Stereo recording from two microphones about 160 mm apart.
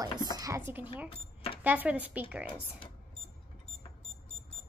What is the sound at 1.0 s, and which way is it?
Speech, 35° left (ahead or behind).